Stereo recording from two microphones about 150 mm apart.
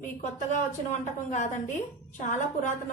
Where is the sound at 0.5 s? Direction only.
55° left (ahead or behind).